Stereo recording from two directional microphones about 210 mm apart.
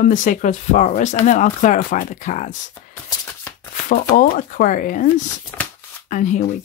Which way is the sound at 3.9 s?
40° left (ahead or behind).